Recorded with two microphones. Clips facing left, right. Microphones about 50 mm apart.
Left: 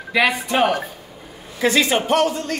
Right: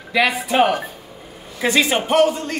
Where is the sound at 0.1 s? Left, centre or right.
Centre.